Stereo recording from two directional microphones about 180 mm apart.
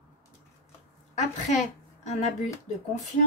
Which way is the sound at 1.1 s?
40° left (ahead or behind).